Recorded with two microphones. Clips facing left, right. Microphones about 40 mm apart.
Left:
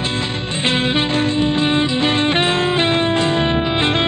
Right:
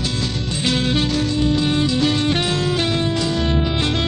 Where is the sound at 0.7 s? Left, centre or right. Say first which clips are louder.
Left 2 dB; left.